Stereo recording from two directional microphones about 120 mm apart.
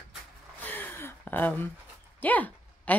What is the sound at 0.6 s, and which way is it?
Gasp, 15° left (ahead or behind).